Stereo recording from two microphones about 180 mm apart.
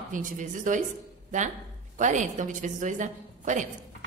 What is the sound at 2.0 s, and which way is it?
A woman's voice, 45° right (ahead or behind).